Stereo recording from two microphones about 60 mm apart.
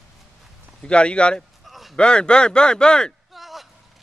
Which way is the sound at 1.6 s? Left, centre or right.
Centre.